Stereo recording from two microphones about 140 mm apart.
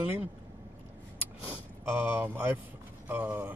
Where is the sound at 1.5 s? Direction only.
15° right (ahead or behind).